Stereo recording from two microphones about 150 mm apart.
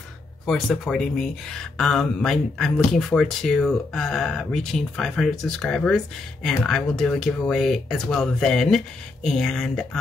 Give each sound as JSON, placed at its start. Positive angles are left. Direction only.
{"t": 0.5, "sound": "speech", "side_deg": 5}